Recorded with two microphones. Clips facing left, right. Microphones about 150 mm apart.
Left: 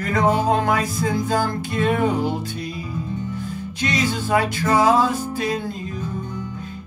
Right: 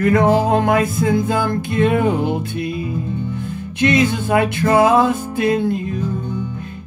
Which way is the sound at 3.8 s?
55° right (ahead or behind).